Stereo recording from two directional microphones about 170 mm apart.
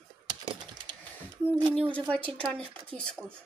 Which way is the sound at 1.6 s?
30° right (ahead or behind).